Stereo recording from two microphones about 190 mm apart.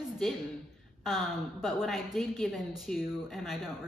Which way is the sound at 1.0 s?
Centre (ahead or behind).